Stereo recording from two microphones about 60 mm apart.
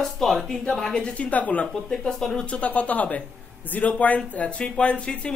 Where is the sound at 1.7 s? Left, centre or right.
Centre.